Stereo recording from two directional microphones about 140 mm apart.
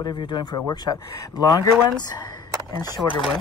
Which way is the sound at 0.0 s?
35° left (ahead or behind).